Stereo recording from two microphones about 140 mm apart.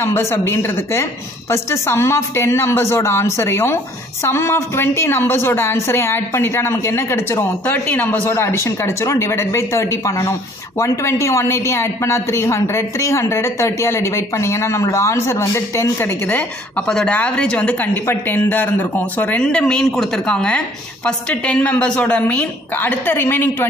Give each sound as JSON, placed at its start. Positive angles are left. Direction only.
{"t": 0.0, "sound": "a woman's voice", "side_deg": 20}